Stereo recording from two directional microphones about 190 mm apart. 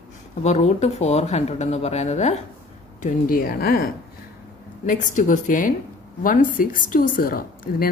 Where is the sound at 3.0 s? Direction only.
50° left (ahead or behind).